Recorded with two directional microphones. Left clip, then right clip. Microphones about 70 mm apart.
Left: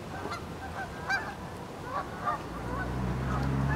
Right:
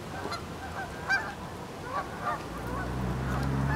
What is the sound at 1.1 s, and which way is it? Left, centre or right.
Goose, centre.